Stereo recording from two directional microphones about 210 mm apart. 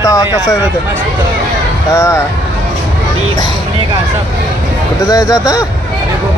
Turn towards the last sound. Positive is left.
turn(degrees=15)  # may be behind; listen again after turning